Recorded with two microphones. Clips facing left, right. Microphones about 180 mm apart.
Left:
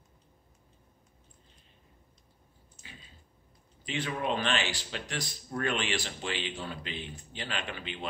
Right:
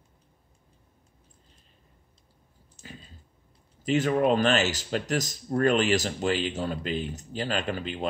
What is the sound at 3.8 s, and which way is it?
Speech, 45° right (ahead or behind).